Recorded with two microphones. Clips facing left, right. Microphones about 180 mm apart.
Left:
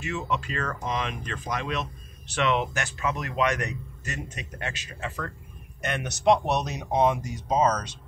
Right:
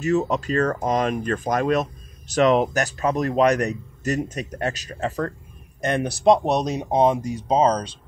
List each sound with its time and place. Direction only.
0.0 s speech: 40° right (ahead or behind)